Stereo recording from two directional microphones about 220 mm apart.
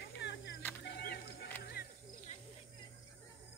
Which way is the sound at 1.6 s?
45° left (ahead or behind).